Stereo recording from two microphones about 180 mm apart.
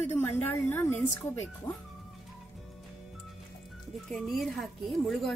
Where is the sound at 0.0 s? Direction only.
10° left (ahead or behind).